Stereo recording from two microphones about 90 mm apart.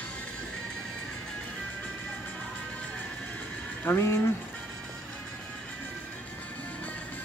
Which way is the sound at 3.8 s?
20° left (ahead or behind).